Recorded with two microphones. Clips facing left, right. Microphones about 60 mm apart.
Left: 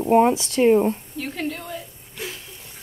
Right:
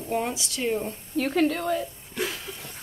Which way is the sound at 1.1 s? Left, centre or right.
Right.